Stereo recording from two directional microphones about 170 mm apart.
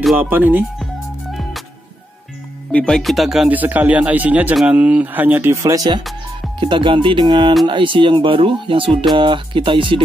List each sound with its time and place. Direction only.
0.0 s speech: 5° right (ahead or behind)
2.7 s speech: 5° left (ahead or behind); by 10.0 s 30° right (ahead or behind)